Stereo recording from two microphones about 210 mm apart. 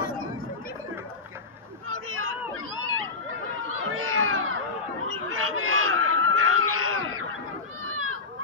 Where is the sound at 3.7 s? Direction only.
80° right.